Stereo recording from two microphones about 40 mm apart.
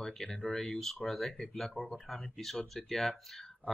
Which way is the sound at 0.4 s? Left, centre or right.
Left.